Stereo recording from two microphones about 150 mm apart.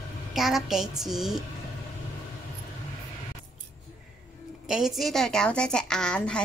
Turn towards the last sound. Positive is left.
turn(degrees=5)  # may be behind; listen again after turning